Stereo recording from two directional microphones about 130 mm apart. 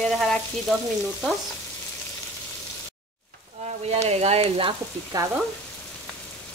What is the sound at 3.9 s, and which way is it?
Speech, 55° right (ahead or behind).